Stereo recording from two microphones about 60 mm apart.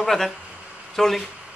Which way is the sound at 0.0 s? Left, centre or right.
Centre.